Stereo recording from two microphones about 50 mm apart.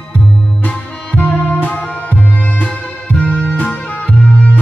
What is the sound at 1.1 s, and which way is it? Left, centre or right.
Music, left.